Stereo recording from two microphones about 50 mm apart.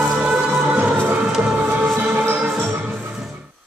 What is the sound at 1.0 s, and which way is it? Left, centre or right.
Music, right.